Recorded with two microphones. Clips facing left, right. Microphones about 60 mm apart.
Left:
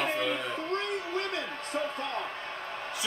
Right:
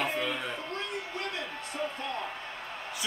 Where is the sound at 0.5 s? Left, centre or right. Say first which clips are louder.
Left 4 dB; left.